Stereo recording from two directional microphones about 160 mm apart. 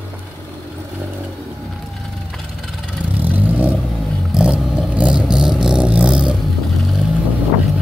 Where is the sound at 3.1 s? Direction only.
10° right (ahead or behind).